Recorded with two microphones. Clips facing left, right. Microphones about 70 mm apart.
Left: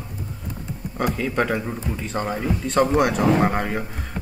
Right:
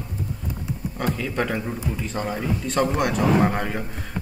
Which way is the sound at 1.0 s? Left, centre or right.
Centre.